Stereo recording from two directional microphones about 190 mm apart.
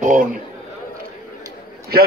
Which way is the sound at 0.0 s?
40° right (ahead or behind).